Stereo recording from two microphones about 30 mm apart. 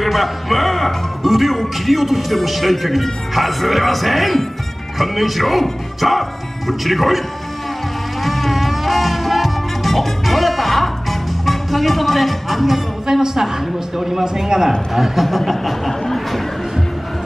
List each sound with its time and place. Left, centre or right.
0.0 s speech: centre
8.2 s music: centre
13.0 s a woman's voice: centre
14.2 s a woman's voice: centre
15.2 s speech: centre
15.9 s speech: centre